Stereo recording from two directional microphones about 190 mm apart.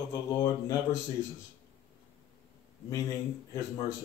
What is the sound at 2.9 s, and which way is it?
Speech, 15° left (ahead or behind).